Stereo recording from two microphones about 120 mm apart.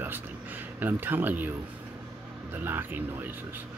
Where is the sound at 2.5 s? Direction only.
20° right (ahead or behind).